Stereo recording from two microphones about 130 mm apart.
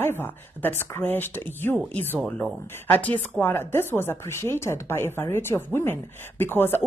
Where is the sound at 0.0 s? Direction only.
15° left (ahead or behind).